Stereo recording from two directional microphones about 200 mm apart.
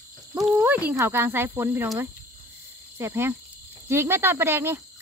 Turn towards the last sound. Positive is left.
turn(degrees=-10)  # may be behind; listen again after turning